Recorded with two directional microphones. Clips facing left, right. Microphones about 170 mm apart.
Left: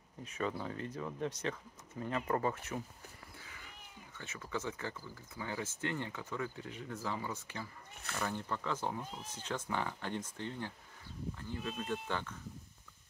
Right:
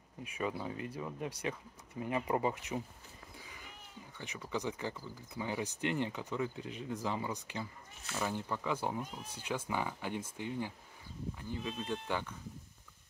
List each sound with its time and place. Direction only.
0.2 s speech: 10° right (ahead or behind)
3.3 s cat: 15° right (ahead or behind)
4.2 s speech: 15° right (ahead or behind)
11.7 s speech: 5° left (ahead or behind)
12.1 s speech: 10° right (ahead or behind)